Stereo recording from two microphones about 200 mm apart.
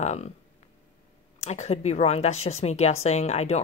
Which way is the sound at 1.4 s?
35° left (ahead or behind).